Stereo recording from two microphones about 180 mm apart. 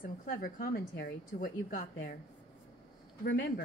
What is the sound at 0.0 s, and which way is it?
A woman's voice, 50° left (ahead or behind).